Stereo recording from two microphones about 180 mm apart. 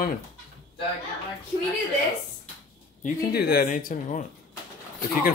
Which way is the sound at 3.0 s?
55° left (ahead or behind).